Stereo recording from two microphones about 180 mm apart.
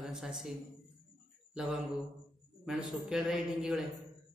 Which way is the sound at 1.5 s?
5° right (ahead or behind).